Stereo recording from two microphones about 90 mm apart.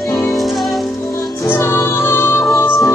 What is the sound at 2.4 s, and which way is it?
Music, 40° left (ahead or behind).